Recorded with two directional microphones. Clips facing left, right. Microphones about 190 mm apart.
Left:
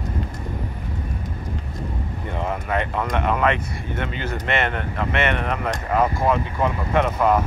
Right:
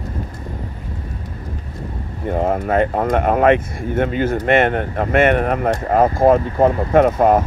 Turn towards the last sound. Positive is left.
turn(degrees=-50)  # may be behind; listen again after turning